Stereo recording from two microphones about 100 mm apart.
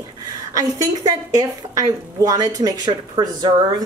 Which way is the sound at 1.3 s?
35° right (ahead or behind).